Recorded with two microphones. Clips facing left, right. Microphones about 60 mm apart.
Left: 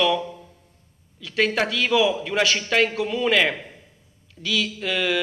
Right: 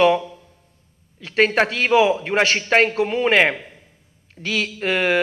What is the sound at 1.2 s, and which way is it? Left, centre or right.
A man's voice, right.